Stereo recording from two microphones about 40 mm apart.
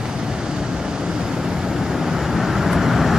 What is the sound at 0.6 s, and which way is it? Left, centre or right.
Vehicle, centre.